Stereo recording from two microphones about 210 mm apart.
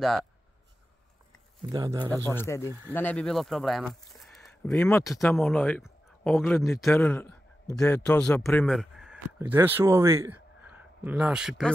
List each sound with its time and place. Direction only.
0.0 s speech: centre (ahead or behind)
1.7 s speech: 20° right (ahead or behind)
2.2 s a man's voice: 10° left (ahead or behind)
4.7 s a man's voice: 15° left (ahead or behind); by 11.7 s 5° right (ahead or behind)